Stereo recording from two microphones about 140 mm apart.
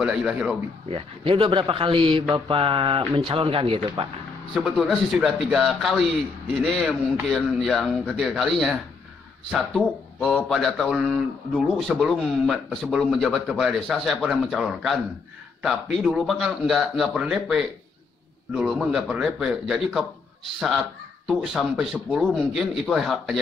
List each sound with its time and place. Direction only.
0.0 s a man's voice: 5° right (ahead or behind)
0.8 s speech: 40° right (ahead or behind)
4.6 s a man's voice: 5° right (ahead or behind)
21.3 s a man's voice: 5° right (ahead or behind)